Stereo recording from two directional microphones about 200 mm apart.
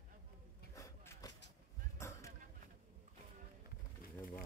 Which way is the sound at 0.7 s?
15° left (ahead or behind).